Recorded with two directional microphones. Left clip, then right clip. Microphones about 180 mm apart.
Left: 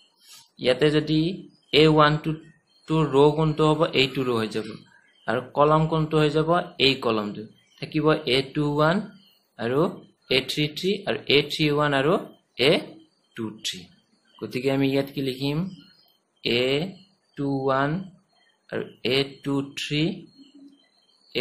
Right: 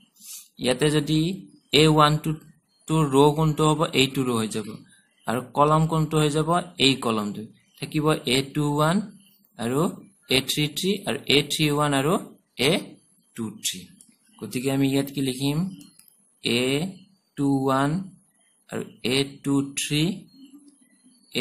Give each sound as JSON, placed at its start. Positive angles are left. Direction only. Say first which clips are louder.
{"t": 0.6, "sound": "a man's voice", "louder": "left 2 dB", "side_deg": -30}